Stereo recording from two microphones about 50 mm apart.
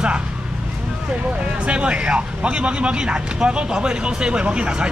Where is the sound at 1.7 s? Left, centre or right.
Right.